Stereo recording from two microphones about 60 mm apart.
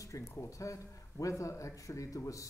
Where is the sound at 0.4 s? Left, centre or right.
Left.